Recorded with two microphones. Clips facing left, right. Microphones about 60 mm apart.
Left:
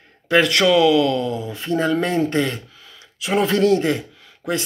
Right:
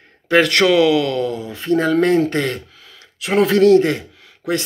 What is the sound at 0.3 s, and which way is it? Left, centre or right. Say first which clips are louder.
A man's voice: right 2 dB; right.